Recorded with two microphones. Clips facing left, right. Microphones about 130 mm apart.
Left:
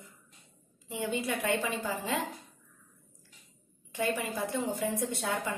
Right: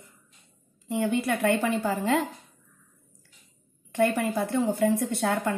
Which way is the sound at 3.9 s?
60° right (ahead or behind).